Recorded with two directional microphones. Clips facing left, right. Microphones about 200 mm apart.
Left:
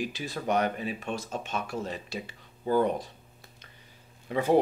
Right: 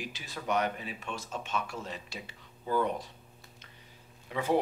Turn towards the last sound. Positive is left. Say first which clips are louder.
# left 5 dB
turn(degrees=40)  # may be behind; listen again after turning